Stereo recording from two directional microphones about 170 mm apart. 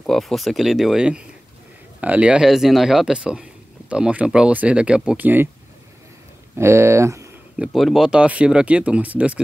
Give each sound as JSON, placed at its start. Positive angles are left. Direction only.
{"t": 0.0, "sound": "speech", "side_deg": 0}
{"t": 6.5, "sound": "speech", "side_deg": -15}
{"t": 7.6, "sound": "speech", "side_deg": 0}